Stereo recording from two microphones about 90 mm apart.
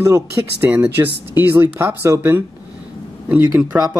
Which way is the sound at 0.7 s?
20° right (ahead or behind).